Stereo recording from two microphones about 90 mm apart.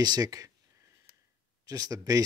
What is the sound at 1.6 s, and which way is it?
Speech, 40° right (ahead or behind).